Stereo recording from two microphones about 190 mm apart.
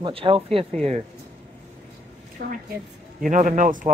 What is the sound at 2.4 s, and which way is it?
A man's voice, 50° right (ahead or behind).